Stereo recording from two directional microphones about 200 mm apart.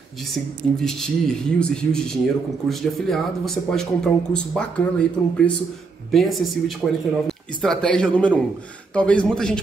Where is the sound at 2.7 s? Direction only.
Centre (ahead or behind).